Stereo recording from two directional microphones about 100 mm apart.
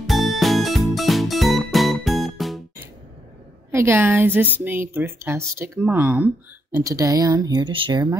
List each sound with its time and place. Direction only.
0.0 s music: centre (ahead or behind)
3.7 s speech: 25° right (ahead or behind)
6.8 s speech: 35° right (ahead or behind); by 8.0 s 55° right (ahead or behind)